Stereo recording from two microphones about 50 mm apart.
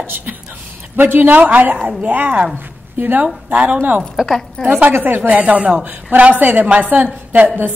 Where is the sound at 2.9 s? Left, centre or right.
Right.